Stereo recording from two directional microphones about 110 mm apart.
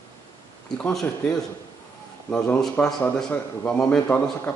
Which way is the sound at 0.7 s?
10° left (ahead or behind).